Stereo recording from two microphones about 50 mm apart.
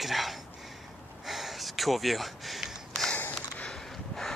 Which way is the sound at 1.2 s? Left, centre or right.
Centre.